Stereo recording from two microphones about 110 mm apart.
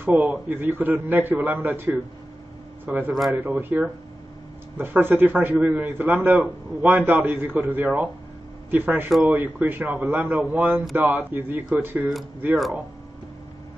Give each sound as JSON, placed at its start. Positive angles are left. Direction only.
{"t": 0.0, "sound": "a man's voice", "side_deg": -20}
{"t": 12.0, "sound": "speech", "side_deg": 0}